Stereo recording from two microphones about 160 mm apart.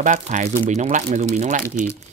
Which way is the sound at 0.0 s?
50° right (ahead or behind).